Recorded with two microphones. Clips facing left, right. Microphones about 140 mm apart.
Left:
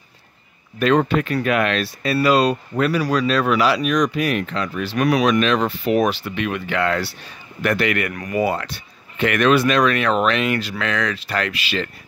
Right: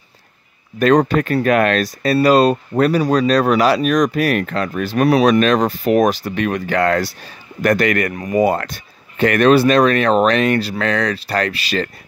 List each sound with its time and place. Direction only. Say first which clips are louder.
0.7 s speech: right 4 dB; 40° right (ahead or behind)
5.0 s speech: right 4 dB; 35° right (ahead or behind)
8.1 s speech: right 5 dB; 25° right (ahead or behind)
8.4 s speech: right 5 dB; 45° right (ahead or behind)